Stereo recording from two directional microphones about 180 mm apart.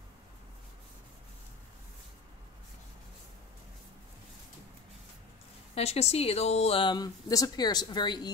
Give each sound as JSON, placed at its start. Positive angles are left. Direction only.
{"t": 5.8, "sound": "speech", "side_deg": 35}